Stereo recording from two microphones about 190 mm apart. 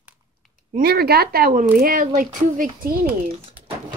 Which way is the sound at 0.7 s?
55° right (ahead or behind).